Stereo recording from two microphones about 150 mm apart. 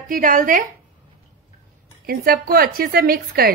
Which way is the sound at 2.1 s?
90° right.